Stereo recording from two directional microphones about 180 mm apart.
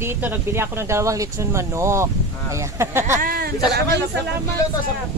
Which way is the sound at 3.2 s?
55° right (ahead or behind).